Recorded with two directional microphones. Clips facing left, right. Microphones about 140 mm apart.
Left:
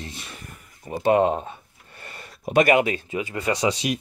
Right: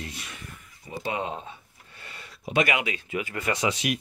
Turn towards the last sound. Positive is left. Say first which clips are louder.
# left 4 dB
turn(degrees=30)  # may be behind; listen again after turning